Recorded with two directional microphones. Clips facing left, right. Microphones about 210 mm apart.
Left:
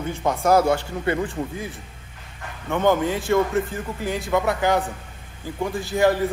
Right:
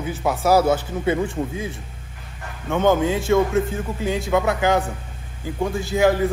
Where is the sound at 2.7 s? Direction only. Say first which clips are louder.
Right 2 dB; 20° right (ahead or behind).